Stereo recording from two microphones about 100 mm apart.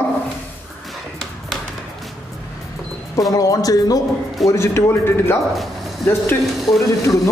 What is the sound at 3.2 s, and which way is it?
Speech, 35° left (ahead or behind).